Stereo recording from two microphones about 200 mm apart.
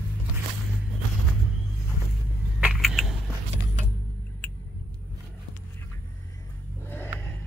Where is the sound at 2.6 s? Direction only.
5° right (ahead or behind).